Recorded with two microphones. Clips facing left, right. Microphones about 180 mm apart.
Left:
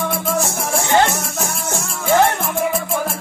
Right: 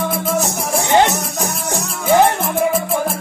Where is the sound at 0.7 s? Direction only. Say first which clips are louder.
Right 2 dB; 15° right (ahead or behind).